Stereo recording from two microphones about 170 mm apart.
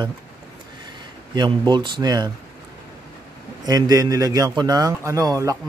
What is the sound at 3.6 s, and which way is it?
A man's voice, 20° right (ahead or behind).